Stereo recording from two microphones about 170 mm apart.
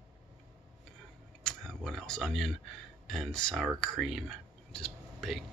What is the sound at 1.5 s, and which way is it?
Speech, centre (ahead or behind).